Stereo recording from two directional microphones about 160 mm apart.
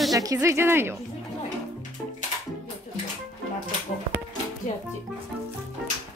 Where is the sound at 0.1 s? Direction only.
20° right (ahead or behind).